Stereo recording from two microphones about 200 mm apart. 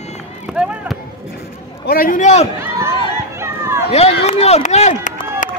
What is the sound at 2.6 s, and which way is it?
Speech, 15° right (ahead or behind).